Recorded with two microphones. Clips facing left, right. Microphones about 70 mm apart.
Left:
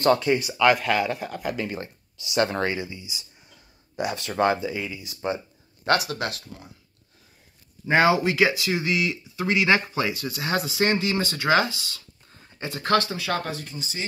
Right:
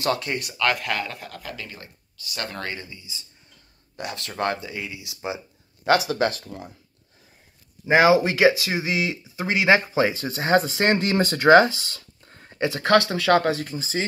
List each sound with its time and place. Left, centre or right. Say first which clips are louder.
0.0 s speech: left 5 dB; centre
1.4 s speech: left 8 dB; left
3.9 s speech: left 5 dB; centre
5.9 s speech: right 3 dB; centre
7.8 s speech: right 3 dB; centre; by 14.0 s right